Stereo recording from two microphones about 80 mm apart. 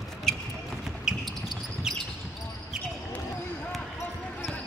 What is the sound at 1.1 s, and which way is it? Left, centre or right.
Basketball bounce, centre.